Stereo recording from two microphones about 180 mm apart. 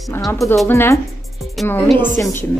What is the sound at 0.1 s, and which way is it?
A woman's voice, 15° left (ahead or behind).